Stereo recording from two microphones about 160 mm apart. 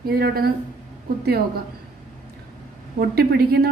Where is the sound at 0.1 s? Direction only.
75° right (ahead or behind).